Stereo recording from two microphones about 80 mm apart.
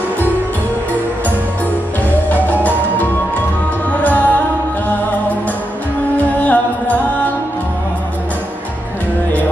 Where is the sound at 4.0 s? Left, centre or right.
Left.